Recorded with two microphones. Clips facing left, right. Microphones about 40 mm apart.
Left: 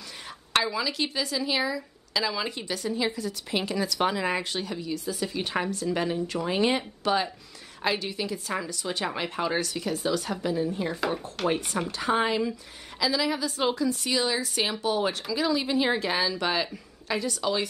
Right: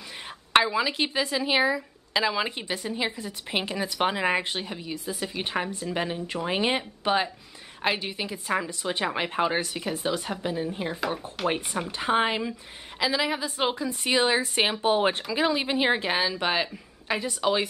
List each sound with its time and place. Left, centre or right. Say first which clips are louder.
0.5 s a woman's voice: right 4 dB; right